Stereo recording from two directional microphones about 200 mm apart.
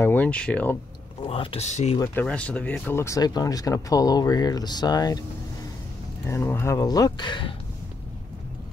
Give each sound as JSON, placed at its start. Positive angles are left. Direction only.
{"t": 0.0, "sound": "speech", "side_deg": 10}
{"t": 1.2, "sound": "speech", "side_deg": 25}
{"t": 2.0, "sound": "speech", "side_deg": 5}
{"t": 6.2, "sound": "speech", "side_deg": 10}